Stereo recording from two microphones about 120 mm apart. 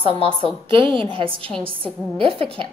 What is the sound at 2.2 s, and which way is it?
Speech, 45° right (ahead or behind).